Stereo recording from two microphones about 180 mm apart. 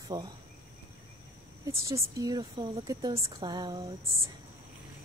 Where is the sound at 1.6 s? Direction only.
15° right (ahead or behind).